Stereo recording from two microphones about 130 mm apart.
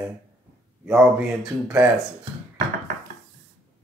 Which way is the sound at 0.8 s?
Centre (ahead or behind).